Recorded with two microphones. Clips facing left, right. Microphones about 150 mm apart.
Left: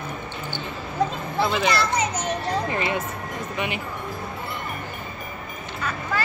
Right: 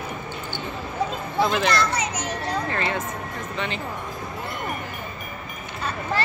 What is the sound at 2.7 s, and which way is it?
Speech, 15° left (ahead or behind).